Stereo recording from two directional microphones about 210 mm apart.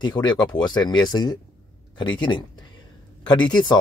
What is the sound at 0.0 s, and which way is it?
Speech, 20° left (ahead or behind).